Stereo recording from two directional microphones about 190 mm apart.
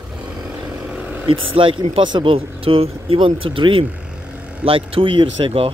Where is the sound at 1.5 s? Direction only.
25° right (ahead or behind).